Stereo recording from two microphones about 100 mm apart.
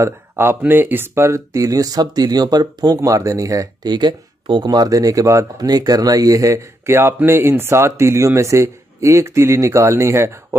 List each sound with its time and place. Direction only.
0.0 s speech: 25° right (ahead or behind)
3.9 s speech: 50° right (ahead or behind)
4.6 s speech: 35° right (ahead or behind)